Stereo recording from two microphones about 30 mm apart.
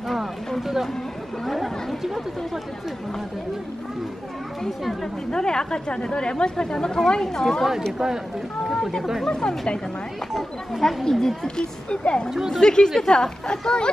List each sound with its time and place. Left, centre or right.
0.6 s speech: centre
5.3 s a woman's voice: left
9.3 s a woman's voice: left
10.3 s speech: centre
11.1 s a woman's voice: centre
11.4 s a woman's voice: left
12.3 s speech: centre
12.5 s a woman's voice: left